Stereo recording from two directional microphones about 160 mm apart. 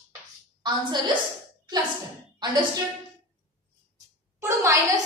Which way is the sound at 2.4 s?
25° right (ahead or behind).